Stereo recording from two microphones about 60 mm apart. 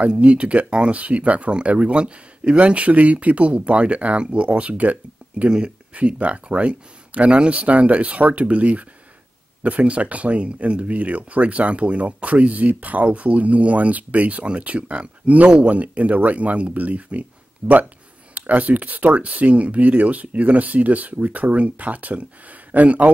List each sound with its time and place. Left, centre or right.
0.0 s speech: right